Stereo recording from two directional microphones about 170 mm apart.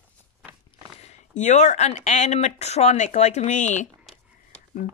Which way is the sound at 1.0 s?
45° left (ahead or behind).